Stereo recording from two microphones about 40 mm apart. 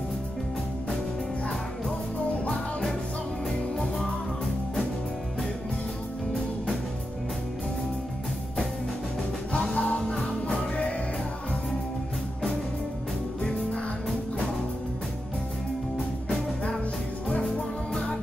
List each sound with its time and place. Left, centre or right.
9.5 s music: centre
9.8 s music: left